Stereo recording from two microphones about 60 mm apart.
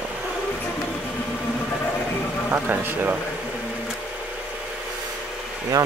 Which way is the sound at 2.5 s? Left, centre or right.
Right.